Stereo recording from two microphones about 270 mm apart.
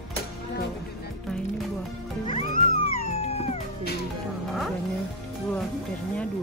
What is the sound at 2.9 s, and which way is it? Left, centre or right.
Music, left.